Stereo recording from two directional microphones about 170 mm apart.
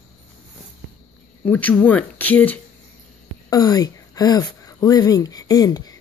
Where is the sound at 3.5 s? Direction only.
20° left (ahead or behind).